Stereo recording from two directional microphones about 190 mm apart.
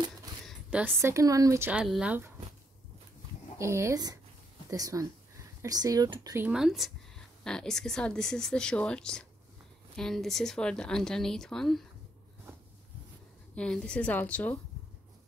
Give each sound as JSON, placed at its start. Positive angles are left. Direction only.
{"t": 0.5, "sound": "speech", "side_deg": -5}
{"t": 3.5, "sound": "speech", "side_deg": -15}
{"t": 6.3, "sound": "a woman's voice", "side_deg": -5}
{"t": 13.6, "sound": "a woman's voice", "side_deg": 5}